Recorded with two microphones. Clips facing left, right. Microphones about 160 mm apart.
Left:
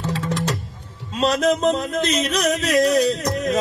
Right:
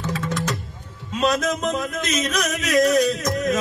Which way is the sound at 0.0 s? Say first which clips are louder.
Left 2 dB; 30° left (ahead or behind).